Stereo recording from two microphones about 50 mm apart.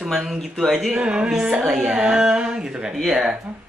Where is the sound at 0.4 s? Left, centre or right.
Centre.